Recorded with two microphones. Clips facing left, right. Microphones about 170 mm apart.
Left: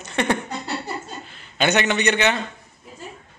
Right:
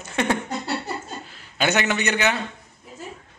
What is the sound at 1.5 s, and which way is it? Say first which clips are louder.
Speech: left 2 dB; 5° right (ahead or behind).